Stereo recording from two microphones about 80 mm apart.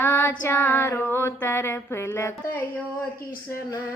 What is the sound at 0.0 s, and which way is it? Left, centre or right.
Female singing, left.